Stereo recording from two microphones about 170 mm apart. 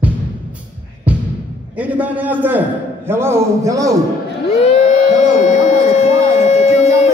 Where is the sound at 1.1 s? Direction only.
10° right (ahead or behind).